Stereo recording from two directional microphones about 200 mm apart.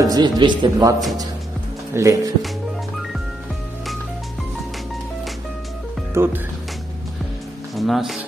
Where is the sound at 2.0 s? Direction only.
15° right (ahead or behind).